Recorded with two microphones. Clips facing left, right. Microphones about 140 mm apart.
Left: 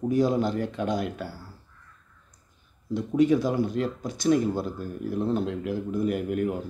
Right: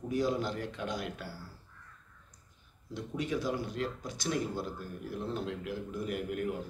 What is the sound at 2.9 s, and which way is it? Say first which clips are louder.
Speech: left 13 dB; 50° left (ahead or behind).